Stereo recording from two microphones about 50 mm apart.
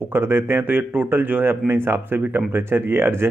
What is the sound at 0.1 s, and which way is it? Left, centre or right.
Speech, right.